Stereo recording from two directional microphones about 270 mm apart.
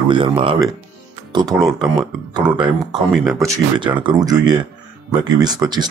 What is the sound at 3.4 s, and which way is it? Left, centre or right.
Speech, centre.